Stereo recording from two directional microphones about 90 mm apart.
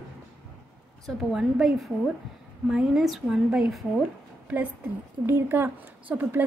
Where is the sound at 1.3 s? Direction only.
5° right (ahead or behind).